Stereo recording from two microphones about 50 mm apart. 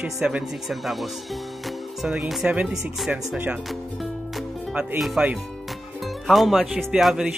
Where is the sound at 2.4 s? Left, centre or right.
Right.